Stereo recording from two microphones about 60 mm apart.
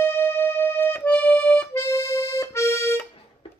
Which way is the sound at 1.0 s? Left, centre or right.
Left.